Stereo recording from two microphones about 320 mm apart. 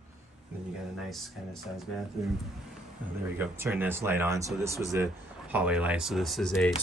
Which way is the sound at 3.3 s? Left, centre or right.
Centre.